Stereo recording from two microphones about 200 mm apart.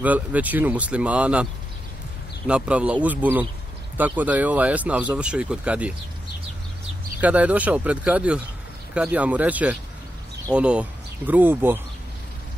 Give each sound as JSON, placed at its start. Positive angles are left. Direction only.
{"t": 0.0, "sound": "speech", "side_deg": -10}
{"t": 7.2, "sound": "speech", "side_deg": -5}